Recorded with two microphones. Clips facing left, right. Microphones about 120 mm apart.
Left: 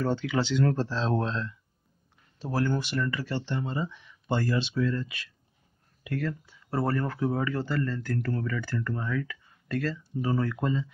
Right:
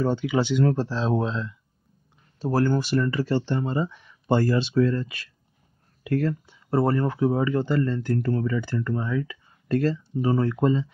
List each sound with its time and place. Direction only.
0.0 s speech: 15° right (ahead or behind)
2.3 s speech: 40° right (ahead or behind)
6.4 s speech: 25° right (ahead or behind)
9.7 s speech: 30° right (ahead or behind)